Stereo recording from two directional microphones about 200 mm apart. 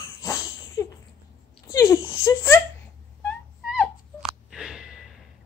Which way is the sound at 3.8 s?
Centre (ahead or behind).